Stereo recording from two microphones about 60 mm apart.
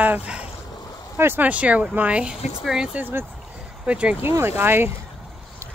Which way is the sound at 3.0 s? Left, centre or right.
Right.